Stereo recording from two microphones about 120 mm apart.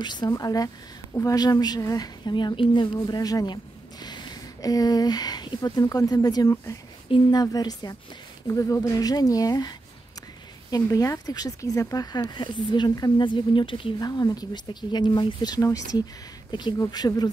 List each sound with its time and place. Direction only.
0.0 s speech: 40° left (ahead or behind)